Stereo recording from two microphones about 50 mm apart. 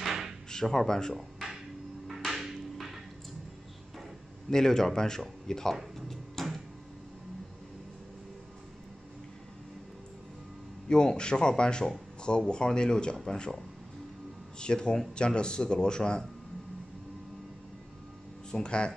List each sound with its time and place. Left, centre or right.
0.0 s drawer open or close: centre
0.5 s speech: centre
1.1 s a sound: centre
2.0 s music: centre
4.5 s speech: centre
5.9 s a sound: centre
10.9 s speech: centre
18.5 s speech: centre